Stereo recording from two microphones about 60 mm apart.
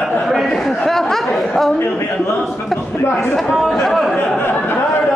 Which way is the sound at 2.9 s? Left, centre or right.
Left.